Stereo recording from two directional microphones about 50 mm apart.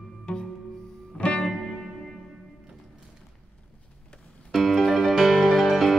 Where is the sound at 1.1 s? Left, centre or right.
Left.